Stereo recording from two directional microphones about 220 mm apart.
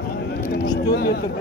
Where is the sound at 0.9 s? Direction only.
45° left (ahead or behind).